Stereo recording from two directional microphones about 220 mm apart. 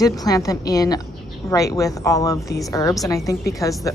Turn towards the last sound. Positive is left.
turn(degrees=15)  # may be behind; listen again after turning